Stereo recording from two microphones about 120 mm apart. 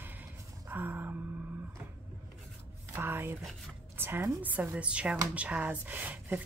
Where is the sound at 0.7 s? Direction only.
15° right (ahead or behind).